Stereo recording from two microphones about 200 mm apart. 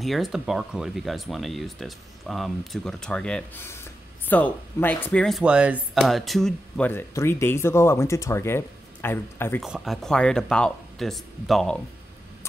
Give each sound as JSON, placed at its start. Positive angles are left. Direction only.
{"t": 0.0, "sound": "speech", "side_deg": 0}
{"t": 9.6, "sound": "speech", "side_deg": 0}